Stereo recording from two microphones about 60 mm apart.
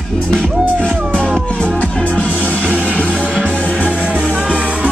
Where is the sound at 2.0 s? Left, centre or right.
Left.